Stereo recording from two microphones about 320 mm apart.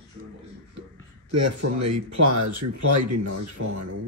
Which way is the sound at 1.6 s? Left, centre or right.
Right.